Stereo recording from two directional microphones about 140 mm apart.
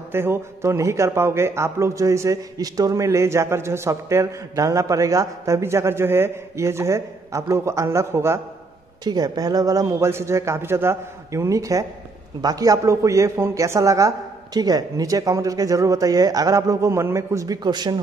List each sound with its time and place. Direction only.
0.1 s a man's voice: 15° right (ahead or behind)